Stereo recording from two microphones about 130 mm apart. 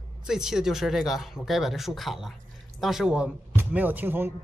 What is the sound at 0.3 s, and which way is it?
Speech, 5° right (ahead or behind).